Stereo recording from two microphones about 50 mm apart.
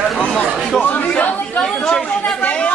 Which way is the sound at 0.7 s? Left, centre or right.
Left.